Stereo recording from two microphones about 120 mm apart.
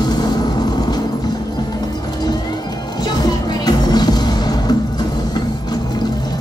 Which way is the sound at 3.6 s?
35° left (ahead or behind).